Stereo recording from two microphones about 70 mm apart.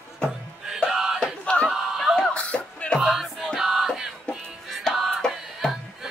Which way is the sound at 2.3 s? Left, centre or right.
Centre.